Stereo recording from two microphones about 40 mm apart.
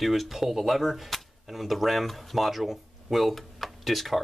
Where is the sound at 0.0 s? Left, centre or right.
Centre.